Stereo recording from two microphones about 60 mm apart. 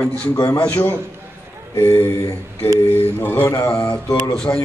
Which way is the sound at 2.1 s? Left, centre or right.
Left.